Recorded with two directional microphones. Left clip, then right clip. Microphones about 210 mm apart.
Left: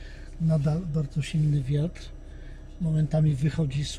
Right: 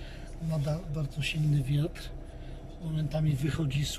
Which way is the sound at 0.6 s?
35° left (ahead or behind).